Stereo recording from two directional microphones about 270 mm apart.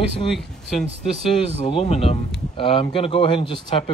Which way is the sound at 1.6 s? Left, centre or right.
Left.